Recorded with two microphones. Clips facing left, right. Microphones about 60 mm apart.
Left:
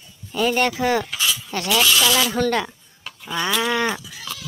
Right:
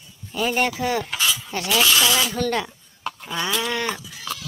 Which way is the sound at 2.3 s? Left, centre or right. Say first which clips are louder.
Left 3 dB; centre.